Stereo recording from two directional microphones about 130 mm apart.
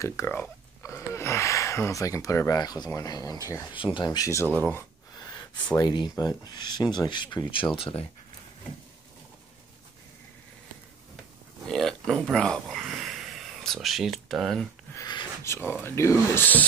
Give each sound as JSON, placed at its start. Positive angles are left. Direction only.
{"t": 0.0, "sound": "speech", "side_deg": 20}
{"t": 5.1, "sound": "gasp", "side_deg": 30}
{"t": 5.8, "sound": "speech", "side_deg": 30}
{"t": 11.6, "sound": "a sound", "side_deg": 5}
{"t": 15.0, "sound": "speech", "side_deg": 35}
{"t": 15.4, "sound": "speech", "side_deg": 20}